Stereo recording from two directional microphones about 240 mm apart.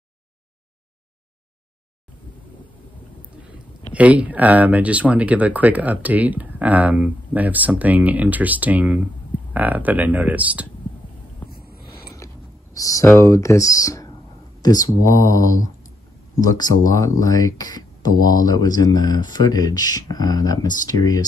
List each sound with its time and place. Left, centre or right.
3.9 s speech: centre
11.9 s a sound: centre
12.7 s speech: centre